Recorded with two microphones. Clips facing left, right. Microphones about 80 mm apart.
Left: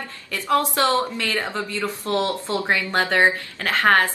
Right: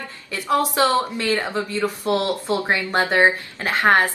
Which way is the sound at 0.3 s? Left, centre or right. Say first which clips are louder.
Even; centre.